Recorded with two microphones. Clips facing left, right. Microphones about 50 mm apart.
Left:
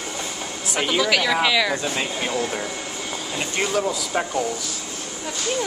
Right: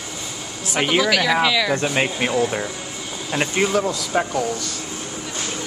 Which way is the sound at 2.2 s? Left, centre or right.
Right.